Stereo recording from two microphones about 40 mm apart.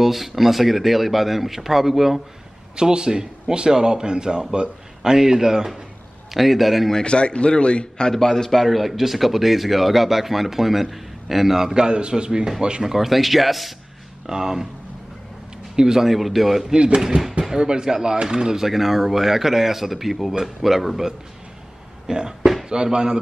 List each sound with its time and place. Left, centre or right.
0.0 s speech: centre
2.7 s a man's voice: right
6.3 s speech: centre
6.9 s speech: left
8.1 s a man's voice: centre
8.5 s speech: centre
11.7 s a man's voice: right
12.8 s speech: centre
14.2 s speech: centre
15.7 s a man's voice: centre
16.1 s speech: centre
16.7 s a man's voice: right; by 21.1 s centre
22.0 s a sound: centre
22.7 s a man's voice: centre